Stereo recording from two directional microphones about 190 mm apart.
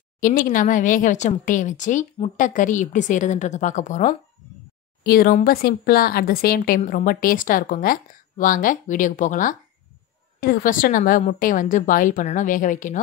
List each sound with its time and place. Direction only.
0.2 s speech: 45° left (ahead or behind)
5.0 s speech: 55° left (ahead or behind)